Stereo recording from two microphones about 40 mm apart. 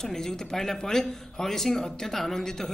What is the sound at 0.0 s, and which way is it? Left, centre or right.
Speech, centre.